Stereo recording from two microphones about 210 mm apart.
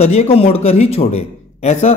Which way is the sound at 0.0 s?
30° left (ahead or behind).